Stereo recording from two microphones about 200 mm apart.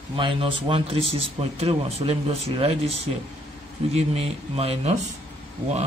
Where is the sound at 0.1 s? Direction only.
25° right (ahead or behind).